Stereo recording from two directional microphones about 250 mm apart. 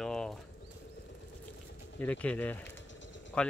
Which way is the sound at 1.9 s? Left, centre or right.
Centre.